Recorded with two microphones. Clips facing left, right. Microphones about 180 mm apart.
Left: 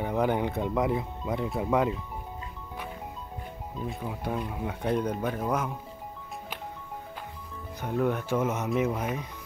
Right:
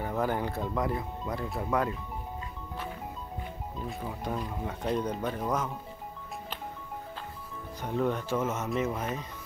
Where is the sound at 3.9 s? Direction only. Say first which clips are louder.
Left 2 dB; 5° left (ahead or behind).